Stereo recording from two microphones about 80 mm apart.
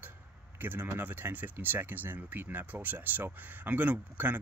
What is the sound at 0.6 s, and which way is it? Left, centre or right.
Speech, right.